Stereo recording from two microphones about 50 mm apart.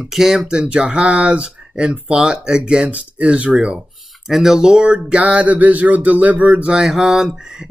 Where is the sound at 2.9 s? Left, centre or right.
Right.